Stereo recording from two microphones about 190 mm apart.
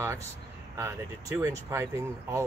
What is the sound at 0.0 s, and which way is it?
Speech, 15° right (ahead or behind).